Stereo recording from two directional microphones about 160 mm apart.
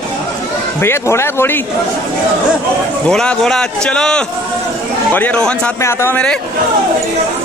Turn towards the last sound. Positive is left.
turn(degrees=5)  # may be behind; listen again after turning